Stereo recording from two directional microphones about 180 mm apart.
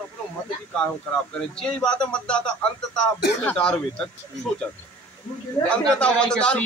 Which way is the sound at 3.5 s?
5° left (ahead or behind).